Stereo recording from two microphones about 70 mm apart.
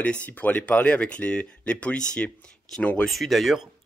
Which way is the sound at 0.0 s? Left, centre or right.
Left.